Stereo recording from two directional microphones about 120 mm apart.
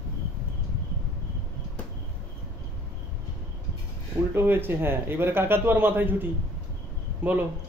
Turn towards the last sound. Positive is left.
turn(degrees=-15)  # may be behind; listen again after turning